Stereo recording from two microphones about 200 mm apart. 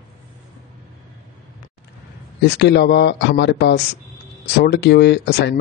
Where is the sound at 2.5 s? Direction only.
55° left (ahead or behind).